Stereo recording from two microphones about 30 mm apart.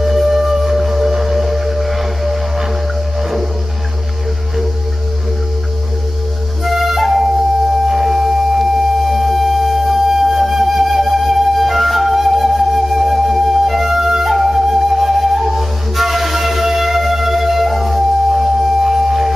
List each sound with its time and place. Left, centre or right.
0.0 s music: centre
6.6 s flute: centre
7.8 s music: centre
10.0 s flute: centre